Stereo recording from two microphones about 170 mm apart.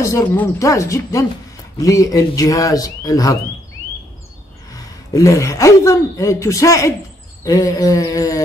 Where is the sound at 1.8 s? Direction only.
20° left (ahead or behind).